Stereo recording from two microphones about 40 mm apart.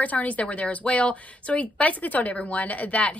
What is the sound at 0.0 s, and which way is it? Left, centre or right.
A woman's voice, left.